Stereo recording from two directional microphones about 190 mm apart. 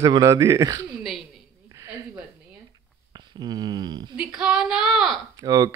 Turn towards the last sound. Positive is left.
turn(degrees=-20)  # may be behind; listen again after turning